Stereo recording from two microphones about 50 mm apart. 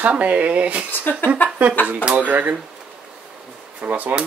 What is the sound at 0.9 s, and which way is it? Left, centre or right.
Speech, left.